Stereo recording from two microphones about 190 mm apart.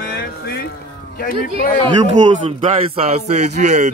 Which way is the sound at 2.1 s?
30° right (ahead or behind).